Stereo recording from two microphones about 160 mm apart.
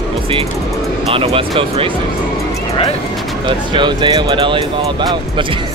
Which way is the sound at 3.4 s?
30° right (ahead or behind).